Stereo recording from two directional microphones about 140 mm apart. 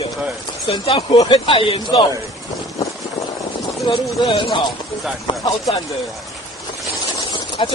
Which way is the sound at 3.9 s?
35° left (ahead or behind).